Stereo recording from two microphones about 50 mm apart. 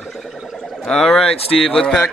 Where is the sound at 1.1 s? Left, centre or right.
Centre.